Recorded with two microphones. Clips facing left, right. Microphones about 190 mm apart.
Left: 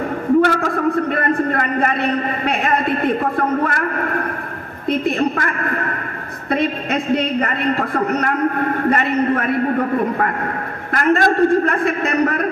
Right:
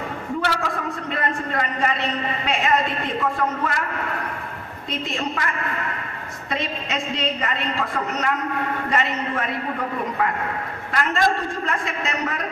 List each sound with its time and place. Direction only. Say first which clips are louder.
0.4 s a sound: left 6 dB; 50° left (ahead or behind)
4.8 s a woman's voice: left 10 dB; 55° left (ahead or behind)
10.9 s a woman's voice: left 6 dB; 50° left (ahead or behind)